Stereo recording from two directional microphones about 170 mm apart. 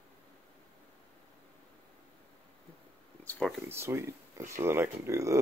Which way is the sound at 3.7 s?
15° right (ahead or behind).